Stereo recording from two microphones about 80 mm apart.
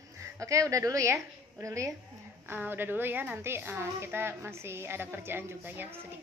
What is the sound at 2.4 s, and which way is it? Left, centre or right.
A woman's voice, right.